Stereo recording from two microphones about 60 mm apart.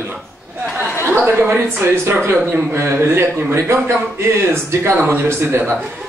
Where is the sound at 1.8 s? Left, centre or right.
Right.